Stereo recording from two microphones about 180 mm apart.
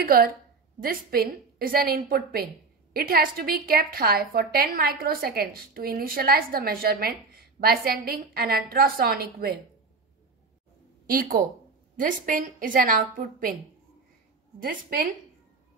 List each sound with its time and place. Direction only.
0.0 s a woman's voice: 60° right (ahead or behind)
11.1 s a woman's voice: 55° right (ahead or behind)
14.6 s a woman's voice: 55° right (ahead or behind)